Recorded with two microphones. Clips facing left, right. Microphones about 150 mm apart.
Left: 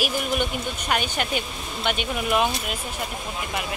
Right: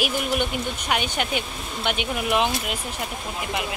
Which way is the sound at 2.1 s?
15° right (ahead or behind).